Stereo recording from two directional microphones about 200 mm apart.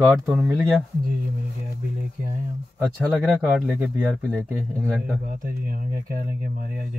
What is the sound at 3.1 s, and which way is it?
Speech, centre (ahead or behind).